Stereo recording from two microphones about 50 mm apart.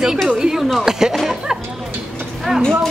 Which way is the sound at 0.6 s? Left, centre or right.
Centre.